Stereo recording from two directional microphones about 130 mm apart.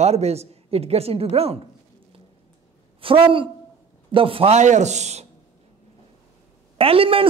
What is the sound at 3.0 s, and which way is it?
A man's voice, 45° right (ahead or behind).